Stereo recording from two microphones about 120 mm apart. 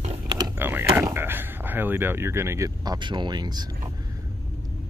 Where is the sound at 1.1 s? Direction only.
15° right (ahead or behind); by 3.6 s 35° right (ahead or behind).